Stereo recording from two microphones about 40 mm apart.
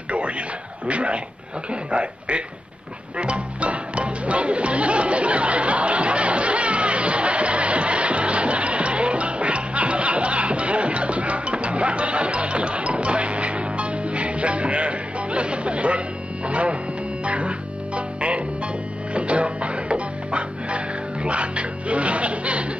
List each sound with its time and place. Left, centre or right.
0.8 s a man's voice: right
3.2 s music: right